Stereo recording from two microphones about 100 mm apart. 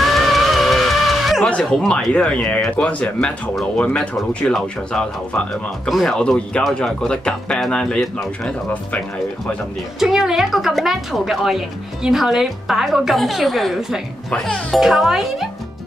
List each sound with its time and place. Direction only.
0.0 s music: centre (ahead or behind)
1.5 s a woman's voice: 5° left (ahead or behind)
9.9 s a woman's voice: 5° right (ahead or behind)